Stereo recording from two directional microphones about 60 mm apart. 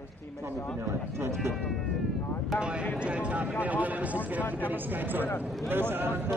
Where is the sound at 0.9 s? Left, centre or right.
Right.